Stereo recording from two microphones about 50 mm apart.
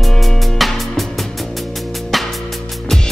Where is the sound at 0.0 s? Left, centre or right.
Centre.